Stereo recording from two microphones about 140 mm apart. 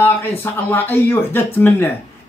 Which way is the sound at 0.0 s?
15° left (ahead or behind).